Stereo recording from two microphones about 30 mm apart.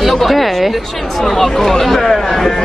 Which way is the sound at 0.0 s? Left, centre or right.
Centre.